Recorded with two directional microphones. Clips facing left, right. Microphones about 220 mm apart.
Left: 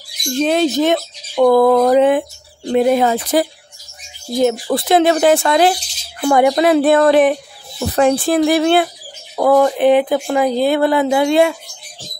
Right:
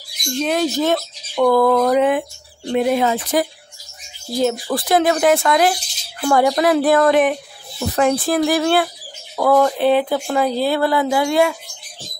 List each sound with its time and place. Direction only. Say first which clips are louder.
0.4 s speech: left 4 dB; 25° left (ahead or behind)
4.3 s speech: left 4 dB; 20° left (ahead or behind)
6.2 s speech: left 3 dB; 20° left (ahead or behind)